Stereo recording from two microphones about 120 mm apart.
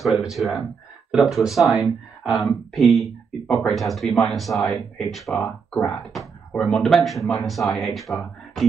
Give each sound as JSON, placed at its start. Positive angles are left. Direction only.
{"t": 0.0, "sound": "speech", "side_deg": 0}
{"t": 5.3, "sound": "speech", "side_deg": 25}
{"t": 6.1, "sound": "speech", "side_deg": 5}